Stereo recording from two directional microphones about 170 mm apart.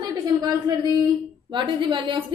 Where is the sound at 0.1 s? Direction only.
20° right (ahead or behind).